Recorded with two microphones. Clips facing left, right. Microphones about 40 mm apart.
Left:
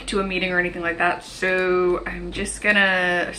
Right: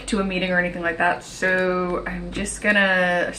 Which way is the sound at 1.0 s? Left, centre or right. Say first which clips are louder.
Right 1 dB; left.